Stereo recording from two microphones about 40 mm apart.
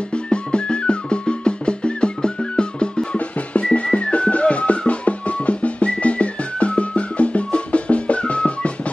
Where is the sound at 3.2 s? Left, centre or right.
Left.